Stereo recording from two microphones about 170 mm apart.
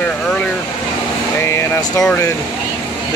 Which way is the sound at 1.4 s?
15° left (ahead or behind).